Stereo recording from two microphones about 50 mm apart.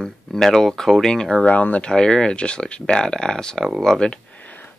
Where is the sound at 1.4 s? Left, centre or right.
Left.